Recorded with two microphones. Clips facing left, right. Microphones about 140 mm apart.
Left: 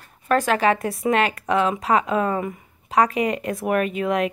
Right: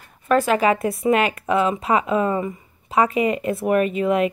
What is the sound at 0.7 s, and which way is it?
Speech, 35° left (ahead or behind).